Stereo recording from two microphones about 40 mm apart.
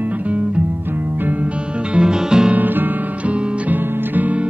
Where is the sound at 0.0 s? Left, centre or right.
Right.